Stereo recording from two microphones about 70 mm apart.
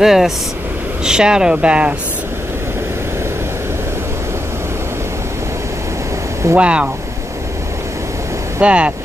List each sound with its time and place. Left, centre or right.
0.0 s speech: centre
6.5 s speech: centre
8.5 s speech: centre